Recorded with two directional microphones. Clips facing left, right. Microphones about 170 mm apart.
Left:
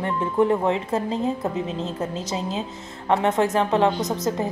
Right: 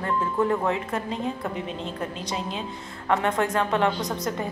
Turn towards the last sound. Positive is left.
turn(degrees=20)  # may be behind; listen again after turning